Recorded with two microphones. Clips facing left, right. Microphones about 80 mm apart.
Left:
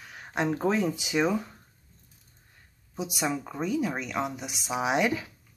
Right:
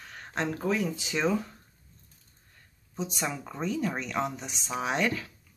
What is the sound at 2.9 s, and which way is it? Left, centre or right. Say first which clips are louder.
Speech: left 3 dB; centre.